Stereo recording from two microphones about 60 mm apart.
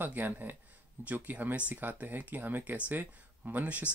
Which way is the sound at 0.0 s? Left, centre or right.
Right.